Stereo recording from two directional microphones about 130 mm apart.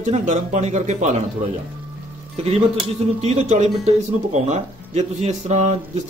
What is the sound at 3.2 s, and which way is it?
Speech, 65° right (ahead or behind).